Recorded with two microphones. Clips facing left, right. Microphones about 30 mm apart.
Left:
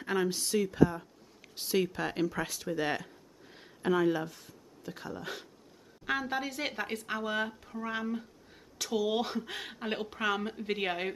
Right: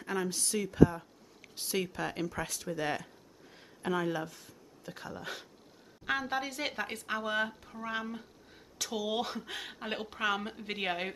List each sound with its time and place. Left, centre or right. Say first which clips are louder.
0.0 s speech: left 4 dB; left
0.4 s speech: right 3 dB; centre